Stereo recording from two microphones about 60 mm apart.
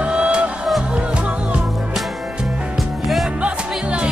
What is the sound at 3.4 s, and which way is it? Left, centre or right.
Music, right.